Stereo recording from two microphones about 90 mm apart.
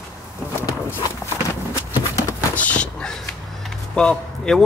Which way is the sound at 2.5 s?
15° left (ahead or behind).